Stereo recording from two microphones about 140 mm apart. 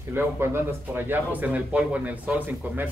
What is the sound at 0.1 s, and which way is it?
Speech, 15° right (ahead or behind).